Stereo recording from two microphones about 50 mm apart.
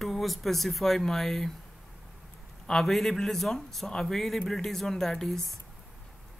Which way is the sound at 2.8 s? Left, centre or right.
Centre.